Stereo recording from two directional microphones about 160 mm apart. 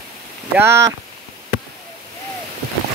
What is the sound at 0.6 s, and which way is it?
Speech, 15° right (ahead or behind).